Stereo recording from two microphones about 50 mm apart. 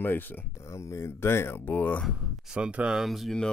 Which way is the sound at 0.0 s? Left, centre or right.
Left.